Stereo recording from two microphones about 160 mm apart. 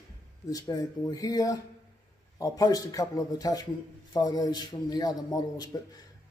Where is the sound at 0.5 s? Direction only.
25° left (ahead or behind).